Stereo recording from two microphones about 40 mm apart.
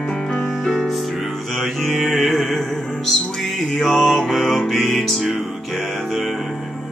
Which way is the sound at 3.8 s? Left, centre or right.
Centre.